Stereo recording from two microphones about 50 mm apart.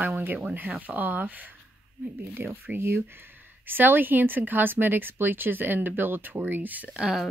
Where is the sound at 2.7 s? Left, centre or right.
Right.